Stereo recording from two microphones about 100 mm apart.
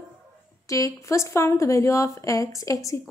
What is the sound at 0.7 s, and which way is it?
A woman's voice, 35° left (ahead or behind).